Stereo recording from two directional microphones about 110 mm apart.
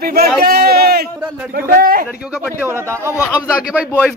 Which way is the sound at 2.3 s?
15° right (ahead or behind).